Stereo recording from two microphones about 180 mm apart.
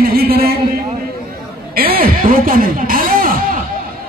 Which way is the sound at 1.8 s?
55° right (ahead or behind).